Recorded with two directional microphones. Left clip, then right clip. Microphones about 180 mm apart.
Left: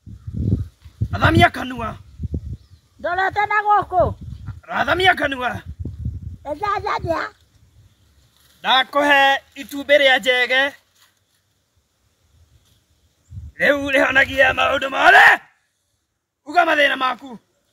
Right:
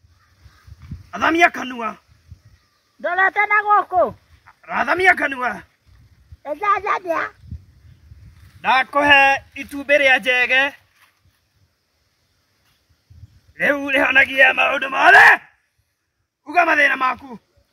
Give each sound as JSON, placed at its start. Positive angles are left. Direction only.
{"t": 1.1, "sound": "a man's voice", "side_deg": 15}
{"t": 3.0, "sound": "a man's voice", "side_deg": 0}
{"t": 4.5, "sound": "speech", "side_deg": 15}
{"t": 6.4, "sound": "a man's voice", "side_deg": 0}
{"t": 8.5, "sound": "a man's voice", "side_deg": 15}
{"t": 13.6, "sound": "a man's voice", "side_deg": 15}
{"t": 16.4, "sound": "a man's voice", "side_deg": 15}